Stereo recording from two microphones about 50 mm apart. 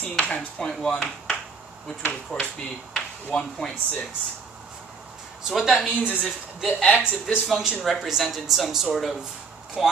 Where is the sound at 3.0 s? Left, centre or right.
Left.